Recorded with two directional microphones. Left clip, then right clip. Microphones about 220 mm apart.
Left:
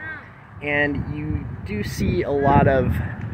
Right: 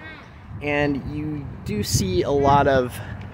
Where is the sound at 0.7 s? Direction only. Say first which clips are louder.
Left 1 dB; 20° right (ahead or behind).